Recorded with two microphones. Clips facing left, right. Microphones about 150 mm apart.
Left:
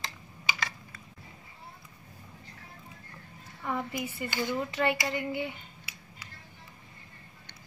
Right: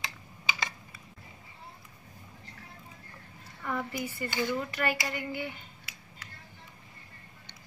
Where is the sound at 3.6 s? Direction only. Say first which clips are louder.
Left 1 dB; 20° left (ahead or behind).